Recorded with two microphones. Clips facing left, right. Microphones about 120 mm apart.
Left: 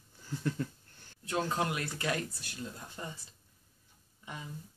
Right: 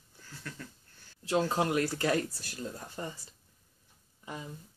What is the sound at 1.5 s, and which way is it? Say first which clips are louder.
Speech: right 5 dB; 30° right (ahead or behind).